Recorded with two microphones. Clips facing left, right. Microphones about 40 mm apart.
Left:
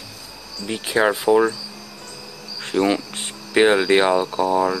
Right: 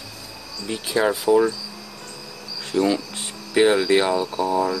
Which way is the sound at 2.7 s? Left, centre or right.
Left.